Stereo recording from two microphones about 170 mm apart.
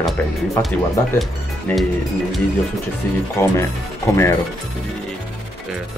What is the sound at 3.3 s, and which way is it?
Speech, 15° left (ahead or behind).